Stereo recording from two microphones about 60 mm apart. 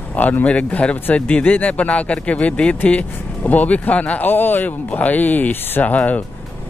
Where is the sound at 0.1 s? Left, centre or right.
Left.